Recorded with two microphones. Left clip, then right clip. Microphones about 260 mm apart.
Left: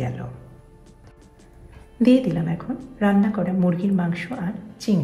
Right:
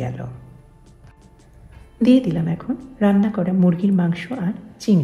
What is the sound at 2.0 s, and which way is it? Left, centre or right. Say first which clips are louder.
Speech: right 1 dB; right.